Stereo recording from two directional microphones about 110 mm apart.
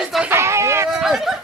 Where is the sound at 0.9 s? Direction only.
5° right (ahead or behind).